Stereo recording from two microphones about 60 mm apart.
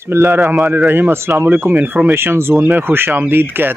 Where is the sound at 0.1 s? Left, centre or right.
Right.